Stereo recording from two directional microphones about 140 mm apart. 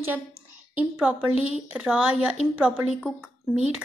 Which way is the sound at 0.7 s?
10° right (ahead or behind).